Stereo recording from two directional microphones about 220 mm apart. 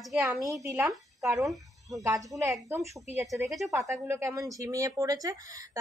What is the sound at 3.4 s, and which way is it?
Speech, centre (ahead or behind).